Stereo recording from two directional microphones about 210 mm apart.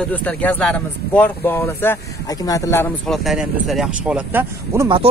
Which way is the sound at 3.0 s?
Centre (ahead or behind).